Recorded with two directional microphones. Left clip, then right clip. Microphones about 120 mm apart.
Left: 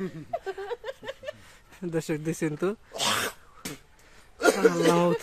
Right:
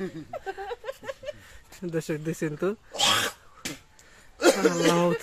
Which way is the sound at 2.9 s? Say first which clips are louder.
Right 6 dB; 25° left (ahead or behind).